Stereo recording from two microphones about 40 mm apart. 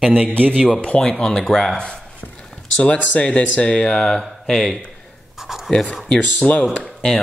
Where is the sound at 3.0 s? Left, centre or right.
Left; by 4.8 s centre.